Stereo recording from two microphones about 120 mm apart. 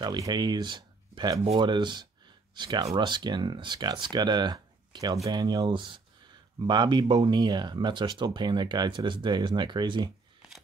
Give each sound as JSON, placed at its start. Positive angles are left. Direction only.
{"t": 0.0, "sound": "speech", "side_deg": -40}